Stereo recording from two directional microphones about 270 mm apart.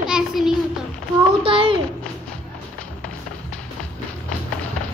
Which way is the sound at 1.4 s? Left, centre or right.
Centre.